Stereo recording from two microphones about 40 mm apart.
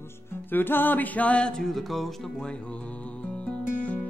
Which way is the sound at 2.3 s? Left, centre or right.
Left.